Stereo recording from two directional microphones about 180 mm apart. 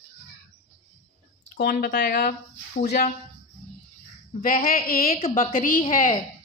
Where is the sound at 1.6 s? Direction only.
55° left (ahead or behind).